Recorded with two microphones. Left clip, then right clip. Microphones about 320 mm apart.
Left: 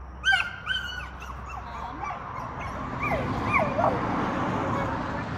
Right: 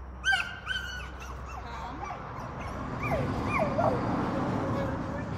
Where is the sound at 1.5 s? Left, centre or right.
Left.